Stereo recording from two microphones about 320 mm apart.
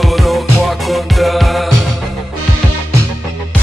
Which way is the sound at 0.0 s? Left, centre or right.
Centre.